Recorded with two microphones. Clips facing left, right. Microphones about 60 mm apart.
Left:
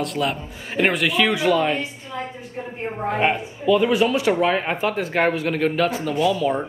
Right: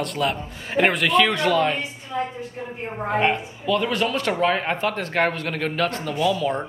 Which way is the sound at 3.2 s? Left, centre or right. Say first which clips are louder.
Even; centre.